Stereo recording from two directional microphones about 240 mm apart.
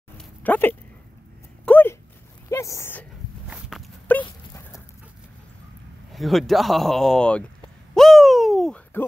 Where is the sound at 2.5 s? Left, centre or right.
Centre.